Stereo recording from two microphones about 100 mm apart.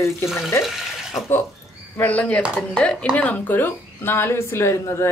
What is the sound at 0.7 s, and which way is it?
Speech, centre (ahead or behind).